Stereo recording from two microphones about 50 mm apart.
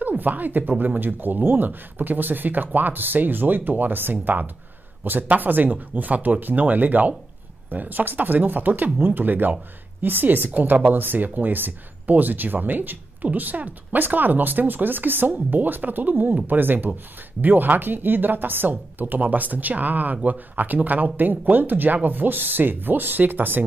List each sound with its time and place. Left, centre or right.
0.2 s speech: right